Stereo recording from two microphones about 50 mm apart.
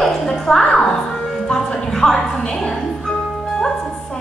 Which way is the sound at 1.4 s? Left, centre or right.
Centre.